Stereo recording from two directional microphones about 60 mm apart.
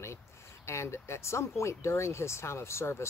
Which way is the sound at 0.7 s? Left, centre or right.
Left.